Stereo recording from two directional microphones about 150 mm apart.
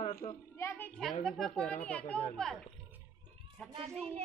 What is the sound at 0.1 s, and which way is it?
Speech, 20° left (ahead or behind).